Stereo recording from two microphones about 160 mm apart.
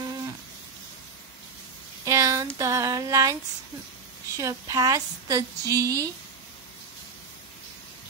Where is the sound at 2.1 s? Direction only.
20° right (ahead or behind).